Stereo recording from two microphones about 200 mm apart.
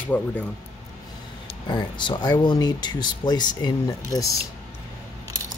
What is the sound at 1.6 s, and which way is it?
Speech, 25° left (ahead or behind).